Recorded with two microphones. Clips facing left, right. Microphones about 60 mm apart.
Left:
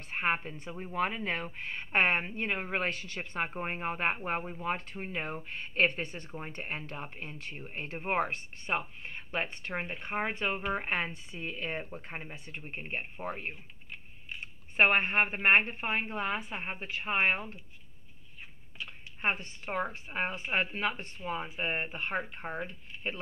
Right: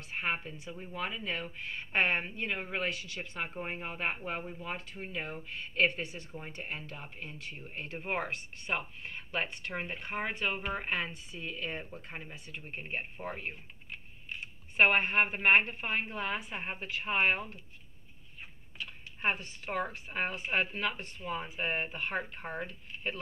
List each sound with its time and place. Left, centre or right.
0.1 s a woman's voice: left
14.8 s speech: left
19.6 s speech: left